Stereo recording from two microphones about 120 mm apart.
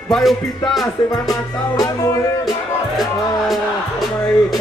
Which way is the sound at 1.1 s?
30° left (ahead or behind).